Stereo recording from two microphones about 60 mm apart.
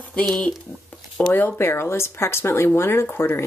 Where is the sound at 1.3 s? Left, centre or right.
Left.